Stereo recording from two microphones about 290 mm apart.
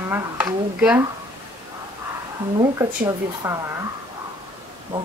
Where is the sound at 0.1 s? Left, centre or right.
Centre.